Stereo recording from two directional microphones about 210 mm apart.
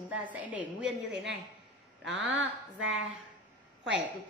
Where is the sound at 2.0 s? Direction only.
60° right (ahead or behind).